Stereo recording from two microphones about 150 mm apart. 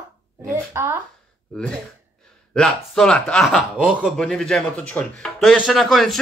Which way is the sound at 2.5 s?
5° left (ahead or behind).